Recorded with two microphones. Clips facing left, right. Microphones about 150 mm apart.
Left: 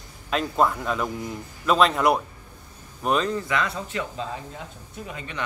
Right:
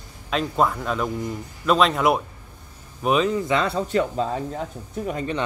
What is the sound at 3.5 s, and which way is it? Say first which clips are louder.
Speech: right 5 dB; 30° right (ahead or behind).